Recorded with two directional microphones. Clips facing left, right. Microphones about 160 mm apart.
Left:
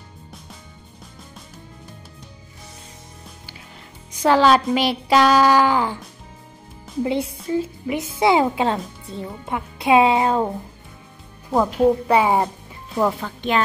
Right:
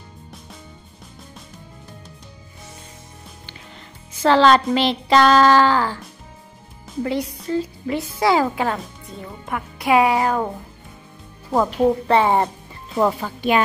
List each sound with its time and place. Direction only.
4.1 s a woman's voice: 10° left (ahead or behind)
7.0 s speech: 20° left (ahead or behind)
7.3 s a woman's voice: 10° left (ahead or behind)
7.8 s speech: 20° left (ahead or behind)
11.5 s a woman's voice: centre (ahead or behind)
12.1 s a woman's voice: 10° left (ahead or behind)
12.9 s speech: 5° right (ahead or behind)